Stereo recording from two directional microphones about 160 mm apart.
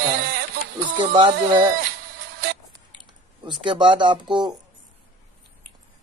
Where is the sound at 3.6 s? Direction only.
30° right (ahead or behind).